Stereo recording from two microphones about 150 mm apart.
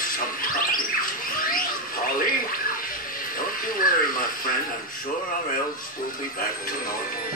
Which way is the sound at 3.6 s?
70° left (ahead or behind).